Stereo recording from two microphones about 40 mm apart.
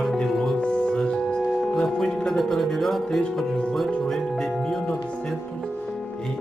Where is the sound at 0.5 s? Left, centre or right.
Left.